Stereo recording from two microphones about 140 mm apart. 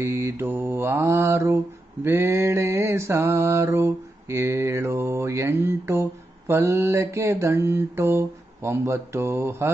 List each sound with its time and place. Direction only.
0.0 s mantra: 20° right (ahead or behind)